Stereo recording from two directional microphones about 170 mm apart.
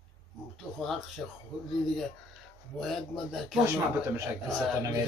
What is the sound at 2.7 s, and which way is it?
Speech, centre (ahead or behind).